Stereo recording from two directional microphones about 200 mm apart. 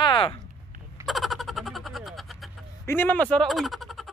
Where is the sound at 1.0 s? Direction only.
Centre (ahead or behind).